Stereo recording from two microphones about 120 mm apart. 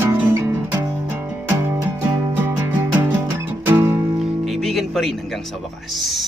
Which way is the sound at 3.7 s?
20° right (ahead or behind).